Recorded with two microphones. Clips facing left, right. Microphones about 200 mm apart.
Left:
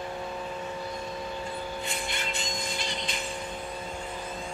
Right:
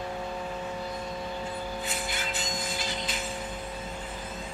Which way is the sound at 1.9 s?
5° right (ahead or behind).